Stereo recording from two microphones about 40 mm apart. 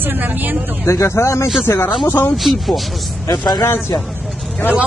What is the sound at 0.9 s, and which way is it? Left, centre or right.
Speech, left.